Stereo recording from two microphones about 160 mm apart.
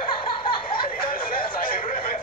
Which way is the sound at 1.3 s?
65° left (ahead or behind).